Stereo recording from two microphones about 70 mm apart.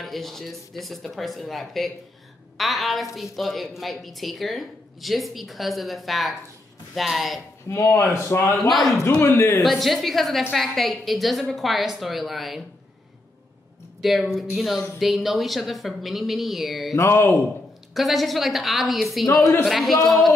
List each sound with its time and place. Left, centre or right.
0.0 s speech: centre
7.6 s speech: left
8.5 s speech: centre
9.2 s speech: left
9.6 s speech: centre
14.0 s speech: centre
16.9 s speech: left
17.9 s speech: centre